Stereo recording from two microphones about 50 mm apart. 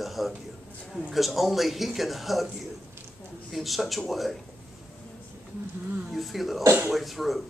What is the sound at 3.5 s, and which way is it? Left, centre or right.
Speech, centre.